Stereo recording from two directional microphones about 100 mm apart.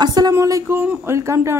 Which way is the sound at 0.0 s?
40° right (ahead or behind).